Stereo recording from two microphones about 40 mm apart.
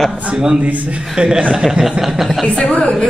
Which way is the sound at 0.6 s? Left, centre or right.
Right.